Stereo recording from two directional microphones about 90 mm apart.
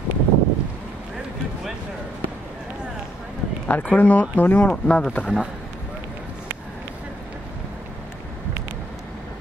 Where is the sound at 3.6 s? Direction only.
20° left (ahead or behind).